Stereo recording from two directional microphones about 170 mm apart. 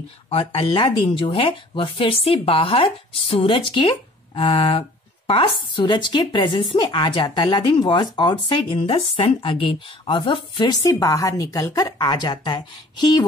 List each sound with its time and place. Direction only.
0.3 s speech: 30° left (ahead or behind)